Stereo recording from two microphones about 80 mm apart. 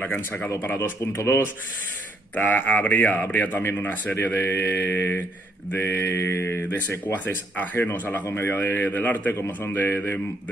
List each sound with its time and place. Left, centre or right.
0.0 s speech: left
1.1 s mantra: left
2.3 s speech: centre
5.7 s mantra: left
7.5 s speech: centre